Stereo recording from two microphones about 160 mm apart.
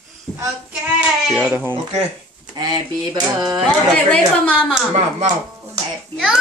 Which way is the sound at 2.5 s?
25° right (ahead or behind).